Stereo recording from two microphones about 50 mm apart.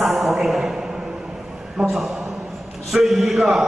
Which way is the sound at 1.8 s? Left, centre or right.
Centre.